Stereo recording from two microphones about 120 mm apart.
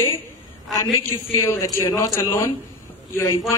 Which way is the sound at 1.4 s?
25° left (ahead or behind).